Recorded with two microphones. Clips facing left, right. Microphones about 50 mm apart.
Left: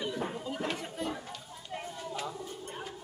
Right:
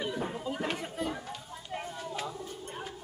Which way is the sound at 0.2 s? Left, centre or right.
Centre.